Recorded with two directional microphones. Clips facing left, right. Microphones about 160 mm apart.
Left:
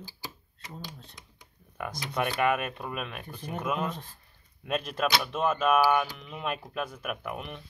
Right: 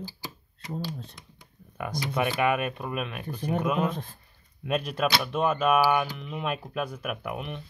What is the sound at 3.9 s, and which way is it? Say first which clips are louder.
Speech: right 4 dB; 50° right (ahead or behind).